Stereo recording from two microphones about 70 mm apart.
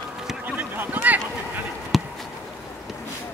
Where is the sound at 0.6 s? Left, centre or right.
Right.